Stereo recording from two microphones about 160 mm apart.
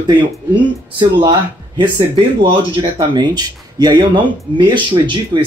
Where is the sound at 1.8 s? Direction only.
30° right (ahead or behind).